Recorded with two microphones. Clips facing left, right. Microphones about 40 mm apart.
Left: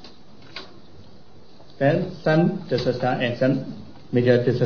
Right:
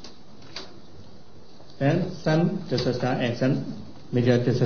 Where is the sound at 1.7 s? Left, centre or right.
Centre.